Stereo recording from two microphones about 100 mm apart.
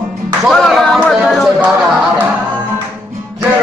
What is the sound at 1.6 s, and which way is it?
Speech, 15° right (ahead or behind).